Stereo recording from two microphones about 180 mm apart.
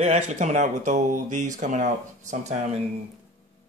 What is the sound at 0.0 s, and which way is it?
Speech, 40° right (ahead or behind).